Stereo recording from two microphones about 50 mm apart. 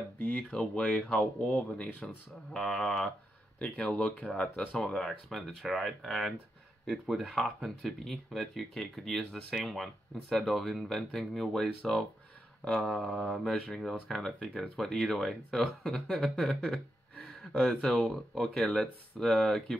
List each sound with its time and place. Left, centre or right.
0.2 s speech: left
0.5 s speech: centre
1.4 s speech: left
2.5 s speech: centre
3.5 s speech: centre
17.3 s gasp: centre
17.6 s speech: centre